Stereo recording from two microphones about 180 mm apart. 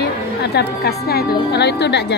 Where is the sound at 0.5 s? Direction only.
65° left (ahead or behind).